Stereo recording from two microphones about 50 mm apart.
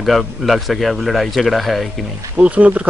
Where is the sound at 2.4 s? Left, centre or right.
Right.